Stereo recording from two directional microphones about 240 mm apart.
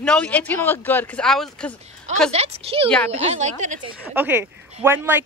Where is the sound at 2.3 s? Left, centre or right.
Right.